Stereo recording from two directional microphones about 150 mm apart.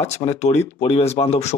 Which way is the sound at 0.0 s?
45° left (ahead or behind).